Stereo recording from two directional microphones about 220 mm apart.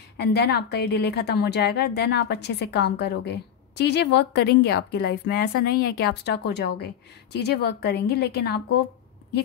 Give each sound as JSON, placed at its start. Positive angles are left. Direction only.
{"t": 0.2, "sound": "a woman's voice", "side_deg": 50}